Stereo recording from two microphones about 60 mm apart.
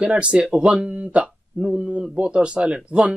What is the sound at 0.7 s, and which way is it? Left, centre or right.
Speech, right.